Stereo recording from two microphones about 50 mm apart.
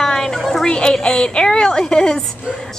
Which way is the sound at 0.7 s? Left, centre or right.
Centre.